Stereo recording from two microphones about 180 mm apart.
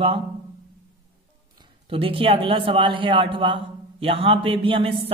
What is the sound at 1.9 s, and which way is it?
A man's voice, 30° right (ahead or behind).